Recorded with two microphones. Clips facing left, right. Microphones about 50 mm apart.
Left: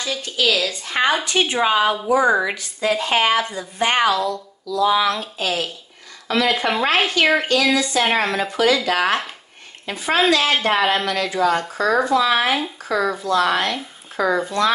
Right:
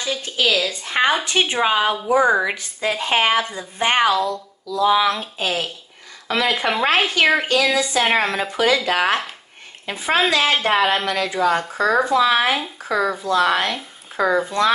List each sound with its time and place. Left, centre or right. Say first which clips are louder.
0.0 s a woman's voice: even; right
8.5 s a woman's voice: even; right
10.5 s speech: even; centre